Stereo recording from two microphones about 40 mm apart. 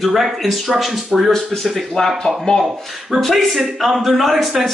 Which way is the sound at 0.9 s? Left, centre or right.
Centre.